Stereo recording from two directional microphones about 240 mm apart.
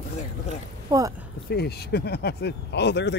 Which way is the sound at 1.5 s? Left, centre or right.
Left.